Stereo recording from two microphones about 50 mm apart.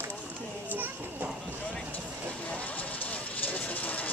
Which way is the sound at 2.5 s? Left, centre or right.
Left.